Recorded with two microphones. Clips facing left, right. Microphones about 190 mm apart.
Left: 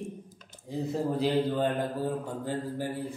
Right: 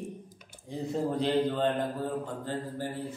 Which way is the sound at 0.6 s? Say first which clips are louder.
Left 1 dB; 5° left (ahead or behind).